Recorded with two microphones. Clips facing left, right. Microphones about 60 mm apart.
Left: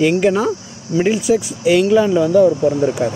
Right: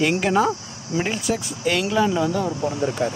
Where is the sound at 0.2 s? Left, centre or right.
Centre.